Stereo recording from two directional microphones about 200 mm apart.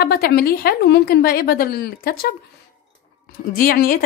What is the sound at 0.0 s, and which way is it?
A woman's voice, 55° left (ahead or behind).